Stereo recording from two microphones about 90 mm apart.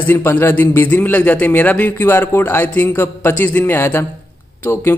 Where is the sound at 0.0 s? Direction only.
25° left (ahead or behind).